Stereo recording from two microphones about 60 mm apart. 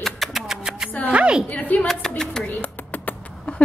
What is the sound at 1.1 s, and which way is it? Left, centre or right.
Speech, centre.